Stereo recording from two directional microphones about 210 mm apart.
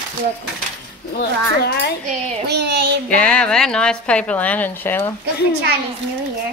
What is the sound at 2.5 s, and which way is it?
Speech, 55° right (ahead or behind).